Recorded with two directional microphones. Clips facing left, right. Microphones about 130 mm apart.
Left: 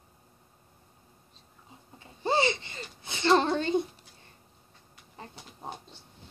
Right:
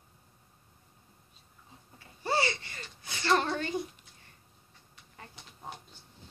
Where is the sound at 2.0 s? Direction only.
20° left (ahead or behind).